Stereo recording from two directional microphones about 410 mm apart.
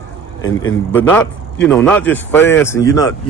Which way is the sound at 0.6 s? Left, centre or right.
Left.